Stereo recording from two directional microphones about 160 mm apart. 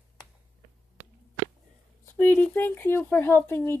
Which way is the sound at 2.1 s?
10° left (ahead or behind).